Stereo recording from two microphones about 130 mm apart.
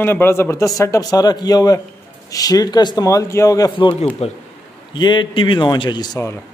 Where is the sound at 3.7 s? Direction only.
45° left (ahead or behind).